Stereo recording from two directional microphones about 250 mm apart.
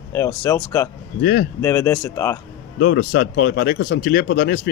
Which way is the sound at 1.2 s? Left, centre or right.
Left.